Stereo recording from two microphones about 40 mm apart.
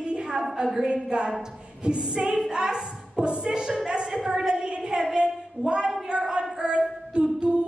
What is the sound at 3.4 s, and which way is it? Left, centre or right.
Speech, centre.